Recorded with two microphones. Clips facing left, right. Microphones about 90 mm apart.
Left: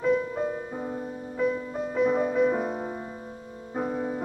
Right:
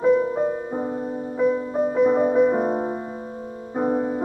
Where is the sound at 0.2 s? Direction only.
25° right (ahead or behind).